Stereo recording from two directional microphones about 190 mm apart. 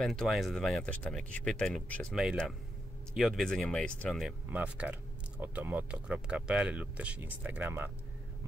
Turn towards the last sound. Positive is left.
turn(degrees=-10)  # may be behind; listen again after turning